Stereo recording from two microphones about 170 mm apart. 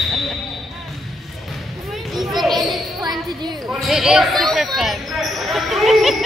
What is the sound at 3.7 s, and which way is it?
Basketball bounce, centre (ahead or behind).